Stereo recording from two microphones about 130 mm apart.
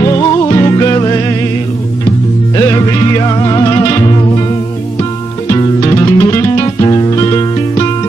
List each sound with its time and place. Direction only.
0.0 s music: 30° left (ahead or behind)
2.5 s music: 30° left (ahead or behind)
5.5 s music: 25° left (ahead or behind)